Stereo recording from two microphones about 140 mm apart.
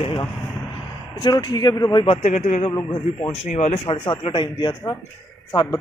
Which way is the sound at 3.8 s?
35° left (ahead or behind).